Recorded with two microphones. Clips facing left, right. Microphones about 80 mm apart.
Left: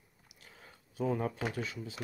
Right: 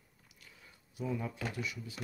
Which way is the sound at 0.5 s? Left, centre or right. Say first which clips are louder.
Left 7 dB; left.